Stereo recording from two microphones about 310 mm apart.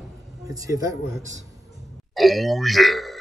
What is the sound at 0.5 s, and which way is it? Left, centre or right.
Speech, centre.